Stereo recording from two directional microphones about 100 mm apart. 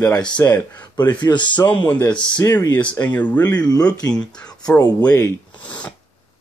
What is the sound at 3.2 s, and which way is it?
Speech, 15° left (ahead or behind).